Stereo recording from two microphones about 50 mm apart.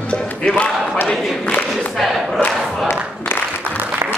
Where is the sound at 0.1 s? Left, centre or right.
Left.